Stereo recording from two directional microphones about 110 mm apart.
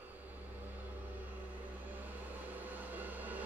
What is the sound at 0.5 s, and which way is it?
Vehicle, 15° right (ahead or behind).